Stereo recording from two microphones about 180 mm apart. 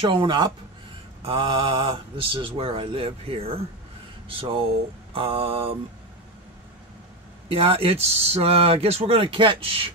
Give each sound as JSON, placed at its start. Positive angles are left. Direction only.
{"t": 0.0, "sound": "speech", "side_deg": -30}
{"t": 7.4, "sound": "speech", "side_deg": -30}